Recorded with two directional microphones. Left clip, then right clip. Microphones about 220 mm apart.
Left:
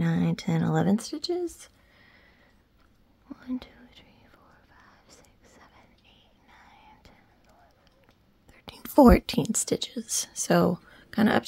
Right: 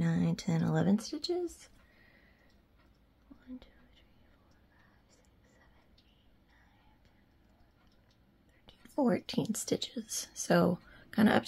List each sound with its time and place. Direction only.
0.0 s speech: 25° left (ahead or behind)
3.3 s whispering: 50° left (ahead or behind)
8.5 s whispering: 55° left (ahead or behind)
9.2 s speech: 30° left (ahead or behind)